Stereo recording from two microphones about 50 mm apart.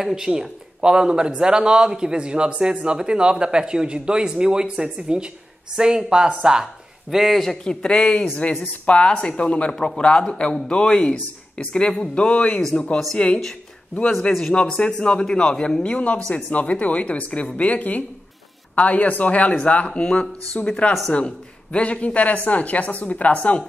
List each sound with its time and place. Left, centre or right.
0.0 s speech: centre
7.6 s a man's voice: centre
14.5 s a man's voice: centre
16.3 s a man's voice: centre
16.5 s a woman's voice: left